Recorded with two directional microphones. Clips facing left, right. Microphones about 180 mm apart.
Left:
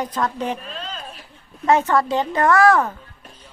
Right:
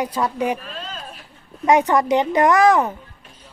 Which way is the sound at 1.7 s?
15° right (ahead or behind).